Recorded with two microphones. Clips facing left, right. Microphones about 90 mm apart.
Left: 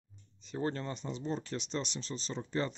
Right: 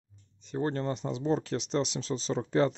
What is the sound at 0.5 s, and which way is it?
Speech, 45° right (ahead or behind).